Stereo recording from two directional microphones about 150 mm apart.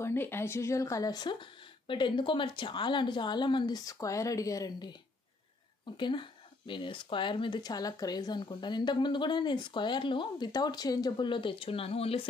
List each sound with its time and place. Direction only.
0.0 s speech: 15° left (ahead or behind)
5.9 s speech: 30° left (ahead or behind)